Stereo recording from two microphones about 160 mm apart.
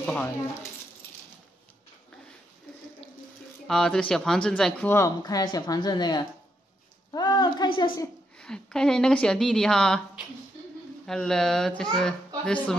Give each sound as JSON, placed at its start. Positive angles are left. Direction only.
{"t": 0.0, "sound": "speech", "side_deg": 10}
{"t": 3.6, "sound": "a woman's voice", "side_deg": 5}
{"t": 4.8, "sound": "speech", "side_deg": 20}
{"t": 8.4, "sound": "a woman's voice", "side_deg": 5}
{"t": 11.1, "sound": "a woman's voice", "side_deg": 5}